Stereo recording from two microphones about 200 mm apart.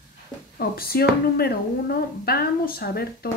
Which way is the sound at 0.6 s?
50° left (ahead or behind).